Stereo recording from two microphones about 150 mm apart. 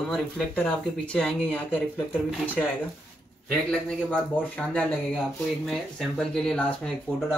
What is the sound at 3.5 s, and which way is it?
A man's voice, 5° left (ahead or behind).